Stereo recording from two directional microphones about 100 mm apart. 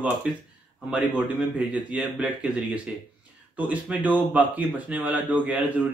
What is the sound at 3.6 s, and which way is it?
Speech, 15° right (ahead or behind).